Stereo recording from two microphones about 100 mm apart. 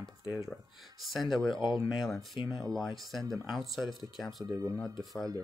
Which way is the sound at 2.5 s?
30° right (ahead or behind).